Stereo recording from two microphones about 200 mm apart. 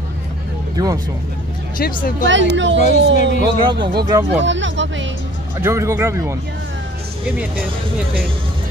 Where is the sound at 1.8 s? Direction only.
45° left (ahead or behind).